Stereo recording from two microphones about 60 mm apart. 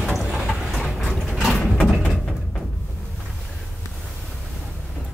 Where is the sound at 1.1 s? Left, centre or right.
Centre.